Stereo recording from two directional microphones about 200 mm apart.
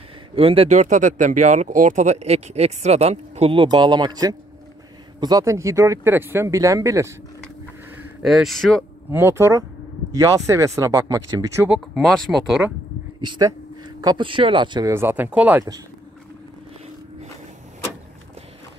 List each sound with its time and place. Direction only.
0.4 s speech: 30° right (ahead or behind)
8.2 s speech: centre (ahead or behind)
9.1 s speech: 10° right (ahead or behind)
11.8 s speech: centre (ahead or behind)
13.2 s speech: 20° right (ahead or behind)